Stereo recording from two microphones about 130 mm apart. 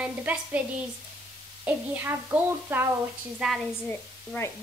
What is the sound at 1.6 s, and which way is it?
Speech, 15° right (ahead or behind).